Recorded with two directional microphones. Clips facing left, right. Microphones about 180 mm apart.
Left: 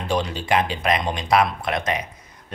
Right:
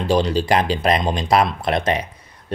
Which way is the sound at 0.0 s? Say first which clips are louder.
Right 6 dB; 35° right (ahead or behind).